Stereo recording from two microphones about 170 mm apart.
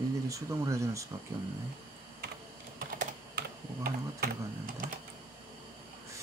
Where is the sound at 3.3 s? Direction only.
65° right (ahead or behind).